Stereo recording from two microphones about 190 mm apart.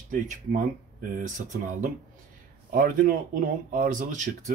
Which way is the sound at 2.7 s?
45° right (ahead or behind).